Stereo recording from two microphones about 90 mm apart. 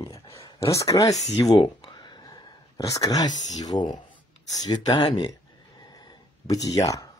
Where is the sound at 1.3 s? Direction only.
50° left (ahead or behind).